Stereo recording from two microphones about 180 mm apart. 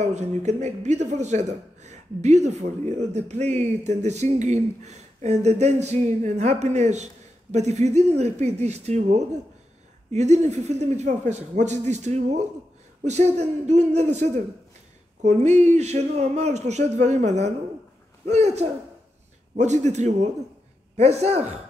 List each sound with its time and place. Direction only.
0.0 s a man's voice: 40° right (ahead or behind)